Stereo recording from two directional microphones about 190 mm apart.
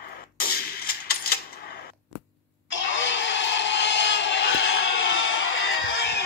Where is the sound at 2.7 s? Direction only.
80° left.